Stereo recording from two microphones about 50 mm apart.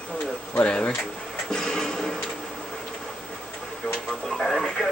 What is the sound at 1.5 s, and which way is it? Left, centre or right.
Music, centre.